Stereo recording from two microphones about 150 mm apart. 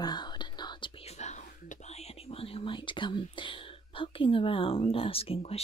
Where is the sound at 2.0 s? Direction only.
40° left (ahead or behind).